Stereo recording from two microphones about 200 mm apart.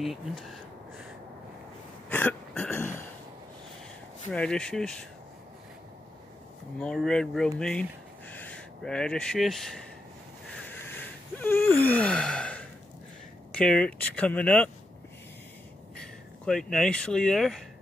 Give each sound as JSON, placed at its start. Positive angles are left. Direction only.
{"t": 0.0, "sound": "speech", "side_deg": 0}
{"t": 2.0, "sound": "throat clearing", "side_deg": 10}
{"t": 4.3, "sound": "speech", "side_deg": 5}
{"t": 6.8, "sound": "speech", "side_deg": 5}
{"t": 10.6, "sound": "wheeze", "side_deg": 10}
{"t": 13.6, "sound": "speech", "side_deg": 5}
{"t": 16.0, "sound": "speech", "side_deg": 5}